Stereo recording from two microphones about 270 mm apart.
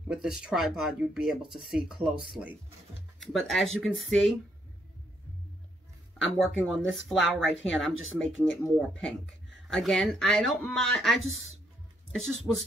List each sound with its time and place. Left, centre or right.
0.1 s speech: centre
6.1 s speech: centre